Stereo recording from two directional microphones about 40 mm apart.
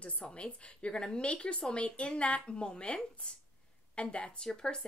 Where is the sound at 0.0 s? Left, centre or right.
Left.